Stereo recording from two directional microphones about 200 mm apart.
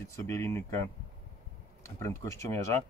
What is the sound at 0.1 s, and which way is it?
Speech, 15° left (ahead or behind).